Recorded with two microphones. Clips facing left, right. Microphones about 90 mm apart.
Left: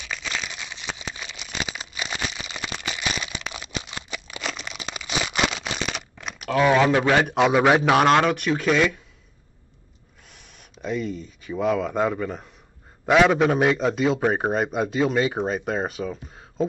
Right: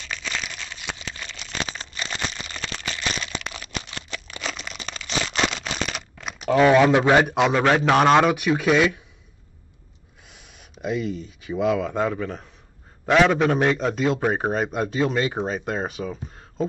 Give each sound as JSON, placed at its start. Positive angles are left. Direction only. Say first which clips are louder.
{"t": 0.0, "sound": "crumpling", "louder": "even", "side_deg": 5}
{"t": 0.9, "sound": "a sound", "louder": "left 1 dB", "side_deg": 10}
{"t": 4.1, "sound": "a sound", "louder": "even", "side_deg": 5}
{"t": 6.9, "sound": "a man's voice", "louder": "right 2 dB", "side_deg": -20}
{"t": 7.2, "sound": "a man's voice", "louder": "even", "side_deg": 0}
{"t": 10.8, "sound": "speech", "louder": "right 1 dB", "side_deg": -10}
{"t": 11.7, "sound": "a man's voice", "louder": "even", "side_deg": 5}